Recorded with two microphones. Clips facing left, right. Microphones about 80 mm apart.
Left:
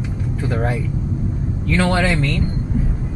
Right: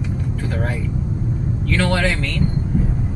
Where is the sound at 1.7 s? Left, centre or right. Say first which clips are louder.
Left 2 dB; left.